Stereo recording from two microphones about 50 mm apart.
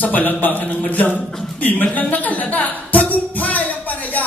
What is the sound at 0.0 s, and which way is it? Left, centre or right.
Speech, left.